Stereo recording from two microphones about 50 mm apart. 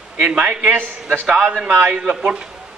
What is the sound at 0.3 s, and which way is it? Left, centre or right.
A man's voice, centre.